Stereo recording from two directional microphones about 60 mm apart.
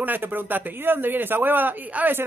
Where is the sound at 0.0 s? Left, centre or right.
Right.